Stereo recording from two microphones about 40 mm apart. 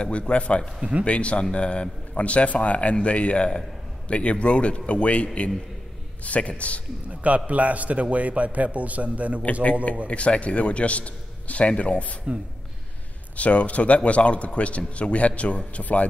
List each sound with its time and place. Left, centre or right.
0.0 s a man's voice: left
7.1 s a man's voice: right
10.0 s speech: left
13.4 s speech: left